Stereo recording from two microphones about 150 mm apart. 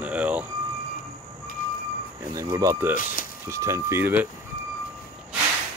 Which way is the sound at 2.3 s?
20° right (ahead or behind).